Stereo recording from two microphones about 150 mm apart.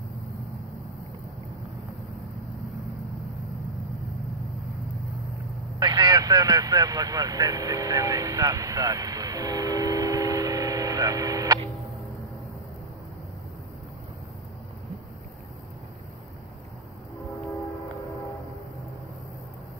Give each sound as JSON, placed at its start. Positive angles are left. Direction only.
{"t": 5.8, "sound": "speech", "side_deg": -25}